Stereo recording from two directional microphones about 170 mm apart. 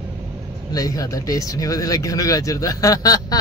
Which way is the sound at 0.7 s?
20° left (ahead or behind).